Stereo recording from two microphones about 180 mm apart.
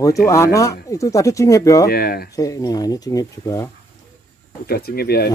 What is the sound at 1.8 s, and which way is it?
Speech, 60° left (ahead or behind).